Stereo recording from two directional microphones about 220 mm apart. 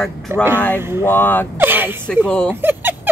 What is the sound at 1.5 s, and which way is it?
Gasp, 10° right (ahead or behind).